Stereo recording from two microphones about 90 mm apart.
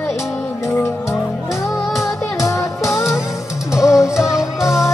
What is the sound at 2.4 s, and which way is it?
Music, 35° left (ahead or behind).